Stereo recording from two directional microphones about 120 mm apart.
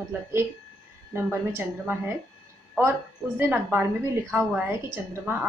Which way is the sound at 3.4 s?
15° right (ahead or behind).